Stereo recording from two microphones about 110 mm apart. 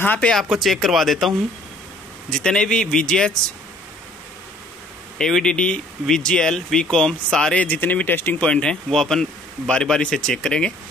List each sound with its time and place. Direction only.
0.0 s speech: 15° left (ahead or behind)
0.3 s speech: centre (ahead or behind)
5.2 s speech: 5° left (ahead or behind)